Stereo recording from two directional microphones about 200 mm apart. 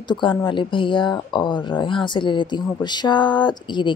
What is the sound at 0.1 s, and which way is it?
Speech, 25° left (ahead or behind).